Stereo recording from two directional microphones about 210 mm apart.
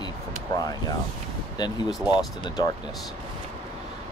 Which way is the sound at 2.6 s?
20° left (ahead or behind).